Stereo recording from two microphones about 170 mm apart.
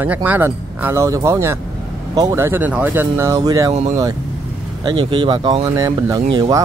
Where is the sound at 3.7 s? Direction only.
40° right (ahead or behind).